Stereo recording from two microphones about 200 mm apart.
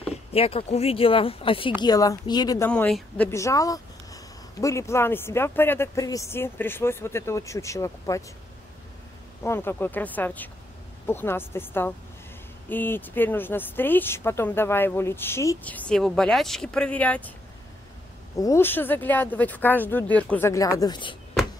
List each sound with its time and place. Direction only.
0.3 s speech: 30° left (ahead or behind)
2.7 s speech: 5° left (ahead or behind)
9.4 s speech: 10° left (ahead or behind)
18.4 s speech: 15° left (ahead or behind)